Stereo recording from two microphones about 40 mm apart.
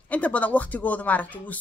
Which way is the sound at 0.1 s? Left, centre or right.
Left.